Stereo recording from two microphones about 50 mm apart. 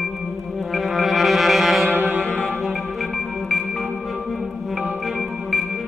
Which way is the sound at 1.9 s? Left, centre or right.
Right.